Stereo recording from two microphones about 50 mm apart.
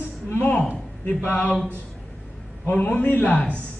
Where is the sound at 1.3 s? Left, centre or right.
Left.